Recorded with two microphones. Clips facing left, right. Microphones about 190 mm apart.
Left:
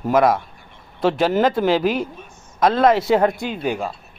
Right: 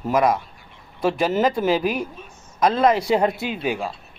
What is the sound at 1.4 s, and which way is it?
Speech, 5° right (ahead or behind).